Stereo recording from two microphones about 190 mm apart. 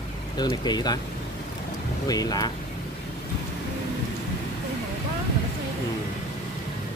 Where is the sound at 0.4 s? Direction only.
20° left (ahead or behind).